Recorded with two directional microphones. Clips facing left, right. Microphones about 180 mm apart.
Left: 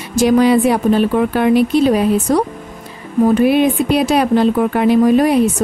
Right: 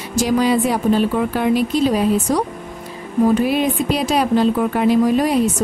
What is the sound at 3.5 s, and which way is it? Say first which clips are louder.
Speech: left 5 dB; 60° left (ahead or behind).